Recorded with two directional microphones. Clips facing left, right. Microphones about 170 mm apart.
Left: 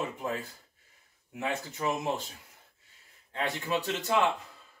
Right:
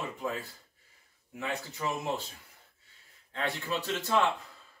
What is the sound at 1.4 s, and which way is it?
Speech, 20° left (ahead or behind).